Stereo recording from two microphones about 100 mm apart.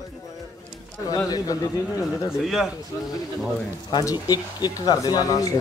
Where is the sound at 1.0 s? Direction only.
35° left (ahead or behind).